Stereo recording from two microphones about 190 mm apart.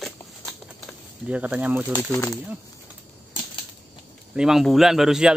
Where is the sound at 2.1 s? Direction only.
15° left (ahead or behind).